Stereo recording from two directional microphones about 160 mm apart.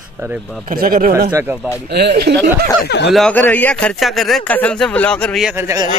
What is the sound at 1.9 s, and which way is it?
Speech, 90° right.